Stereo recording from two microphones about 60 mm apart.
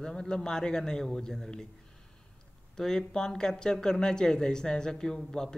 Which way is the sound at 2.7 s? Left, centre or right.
Centre.